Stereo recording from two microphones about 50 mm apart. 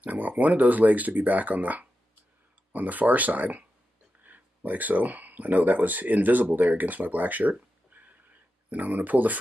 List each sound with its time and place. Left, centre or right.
0.0 s speech: right
7.9 s a sound: right
8.6 s speech: right